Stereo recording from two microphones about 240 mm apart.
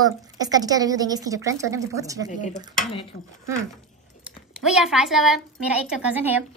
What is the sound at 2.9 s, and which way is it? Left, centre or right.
Speech, left.